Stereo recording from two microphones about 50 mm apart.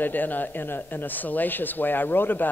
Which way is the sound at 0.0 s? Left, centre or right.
Left.